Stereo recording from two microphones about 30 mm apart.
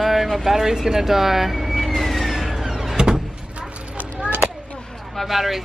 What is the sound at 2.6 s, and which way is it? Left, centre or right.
Power windows, centre.